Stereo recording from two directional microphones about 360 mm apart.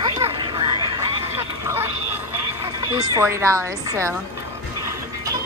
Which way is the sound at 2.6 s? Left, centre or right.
Centre.